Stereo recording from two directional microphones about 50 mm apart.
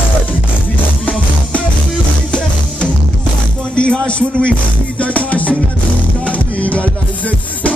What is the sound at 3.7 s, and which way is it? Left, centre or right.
Speech, left.